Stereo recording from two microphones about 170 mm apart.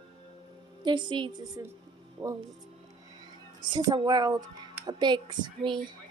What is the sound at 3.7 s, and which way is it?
A woman's voice, 25° right (ahead or behind).